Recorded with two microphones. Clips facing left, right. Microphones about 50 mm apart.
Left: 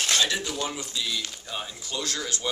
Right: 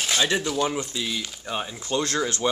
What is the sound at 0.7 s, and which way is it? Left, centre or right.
Speech, right.